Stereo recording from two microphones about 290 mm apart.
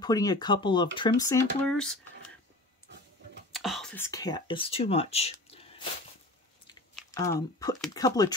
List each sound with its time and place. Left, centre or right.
0.0 s speech: centre
3.5 s speech: centre
7.0 s speech: centre